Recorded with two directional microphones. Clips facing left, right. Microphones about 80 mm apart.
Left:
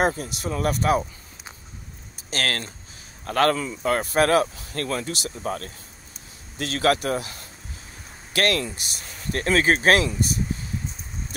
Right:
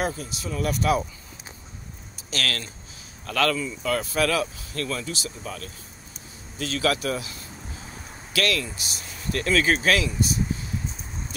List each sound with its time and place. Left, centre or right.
0.0 s speech: left
2.3 s speech: left
5.0 s speech: left